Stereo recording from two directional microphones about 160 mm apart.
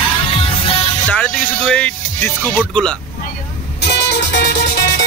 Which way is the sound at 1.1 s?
5° left (ahead or behind).